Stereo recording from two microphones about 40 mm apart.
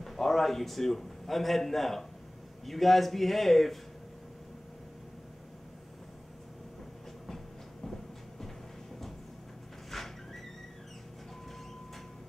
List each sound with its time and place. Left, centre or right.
0.0 s a man's voice: centre
7.2 s train: centre
9.8 s a sound: centre